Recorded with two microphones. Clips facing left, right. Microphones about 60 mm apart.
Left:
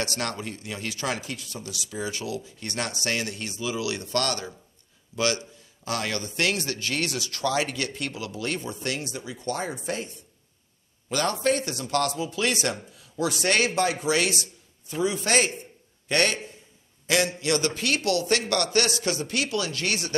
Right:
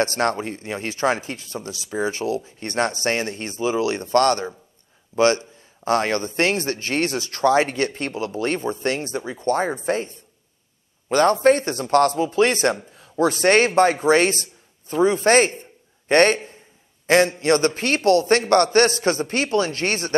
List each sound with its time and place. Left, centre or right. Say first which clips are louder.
0.0 s a man's voice: right 9 dB; right